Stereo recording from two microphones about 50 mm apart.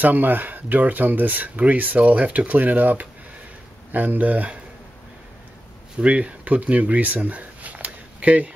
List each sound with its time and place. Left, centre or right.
0.0 s speech: right
5.9 s speech: right